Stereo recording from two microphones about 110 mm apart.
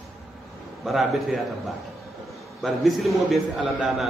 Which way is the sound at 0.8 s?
Centre (ahead or behind).